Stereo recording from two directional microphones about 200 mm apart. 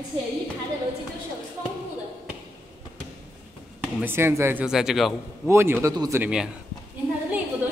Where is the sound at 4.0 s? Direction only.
10° right (ahead or behind).